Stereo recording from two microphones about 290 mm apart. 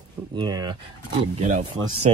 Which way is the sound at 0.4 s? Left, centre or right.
Centre.